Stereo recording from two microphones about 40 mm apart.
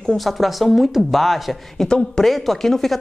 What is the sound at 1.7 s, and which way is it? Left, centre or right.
Speech, centre.